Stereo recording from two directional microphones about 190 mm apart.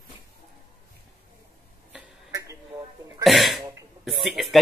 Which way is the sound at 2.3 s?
15° right (ahead or behind).